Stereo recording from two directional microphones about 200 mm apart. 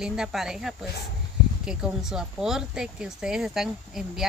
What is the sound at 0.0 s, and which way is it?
Speech, 5° right (ahead or behind).